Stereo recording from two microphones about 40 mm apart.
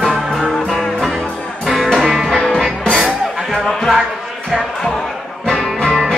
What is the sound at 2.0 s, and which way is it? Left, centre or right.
Music, centre.